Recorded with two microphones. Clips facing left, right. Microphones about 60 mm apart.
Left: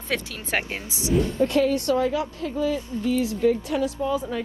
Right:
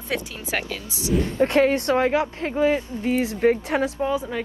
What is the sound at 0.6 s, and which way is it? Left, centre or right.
Speech, left.